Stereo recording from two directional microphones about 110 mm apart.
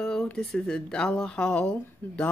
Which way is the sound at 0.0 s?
5° left (ahead or behind).